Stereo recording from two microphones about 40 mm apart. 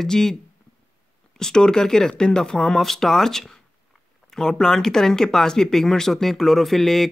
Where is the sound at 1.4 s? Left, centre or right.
Centre.